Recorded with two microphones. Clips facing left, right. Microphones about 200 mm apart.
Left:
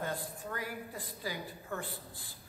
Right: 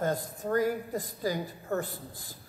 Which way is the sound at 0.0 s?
45° right (ahead or behind).